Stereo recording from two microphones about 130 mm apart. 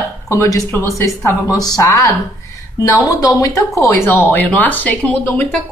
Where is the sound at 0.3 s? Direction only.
25° left (ahead or behind).